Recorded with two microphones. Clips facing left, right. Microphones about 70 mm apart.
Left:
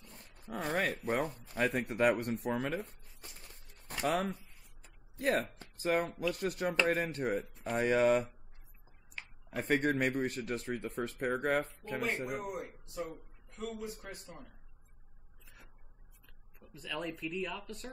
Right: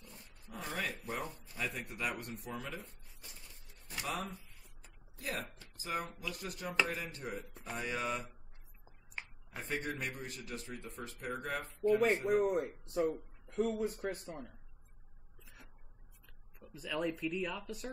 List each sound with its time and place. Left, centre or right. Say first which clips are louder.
0.0 s dog: left 2 dB; left
1.0 s speech: left 7 dB; left
3.7 s a sound: left 7 dB; left
5.1 s speech: left 10 dB; left
9.2 s a sound: right 1 dB; right
9.6 s speech: left 9 dB; left
12.4 s a man's voice: right 8 dB; right
16.5 s speech: right 2 dB; centre